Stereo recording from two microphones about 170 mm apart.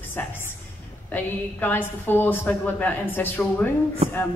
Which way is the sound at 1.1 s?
10° left (ahead or behind).